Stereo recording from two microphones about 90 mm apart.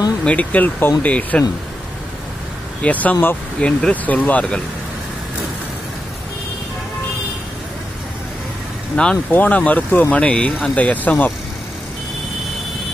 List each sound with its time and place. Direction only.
0.2 s speech: 15° left (ahead or behind)
2.8 s speech: 15° left (ahead or behind)
8.9 s speech: 10° left (ahead or behind)